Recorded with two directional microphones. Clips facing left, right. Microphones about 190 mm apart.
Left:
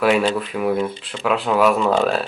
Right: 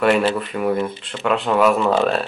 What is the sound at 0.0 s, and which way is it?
Speech, centre (ahead or behind).